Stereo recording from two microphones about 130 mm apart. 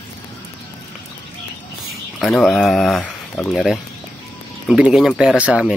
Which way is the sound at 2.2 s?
5° left (ahead or behind).